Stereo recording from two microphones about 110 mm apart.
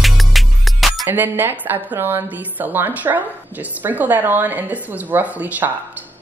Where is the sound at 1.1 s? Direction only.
20° right (ahead or behind).